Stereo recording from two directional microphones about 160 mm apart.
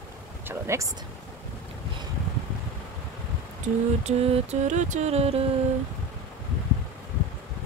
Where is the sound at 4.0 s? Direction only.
40° right (ahead or behind).